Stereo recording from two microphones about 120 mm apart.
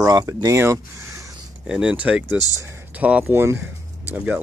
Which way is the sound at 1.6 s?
5° right (ahead or behind).